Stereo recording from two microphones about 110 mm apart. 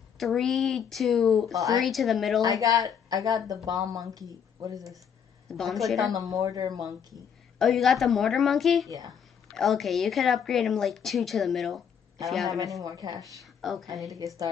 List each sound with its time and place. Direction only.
0.2 s a woman's voice: centre (ahead or behind)
3.1 s a woman's voice: 35° right (ahead or behind)
5.5 s a woman's voice: centre (ahead or behind)
6.1 s a woman's voice: 35° right (ahead or behind)
7.5 s a woman's voice: centre (ahead or behind)
8.8 s a woman's voice: 35° right (ahead or behind)
9.5 s a woman's voice: centre (ahead or behind)
12.8 s a woman's voice: 35° right (ahead or behind)
13.4 s speech: centre (ahead or behind)
14.1 s a woman's voice: 35° right (ahead or behind)